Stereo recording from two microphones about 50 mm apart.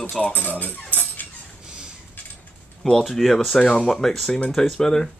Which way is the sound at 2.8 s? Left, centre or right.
Centre.